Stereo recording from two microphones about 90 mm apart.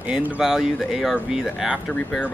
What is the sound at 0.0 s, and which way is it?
Speech, 15° right (ahead or behind).